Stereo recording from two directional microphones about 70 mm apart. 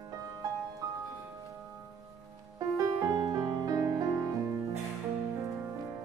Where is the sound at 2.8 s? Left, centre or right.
Right.